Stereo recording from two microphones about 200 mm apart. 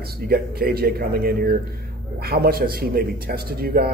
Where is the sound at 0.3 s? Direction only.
50° right (ahead or behind).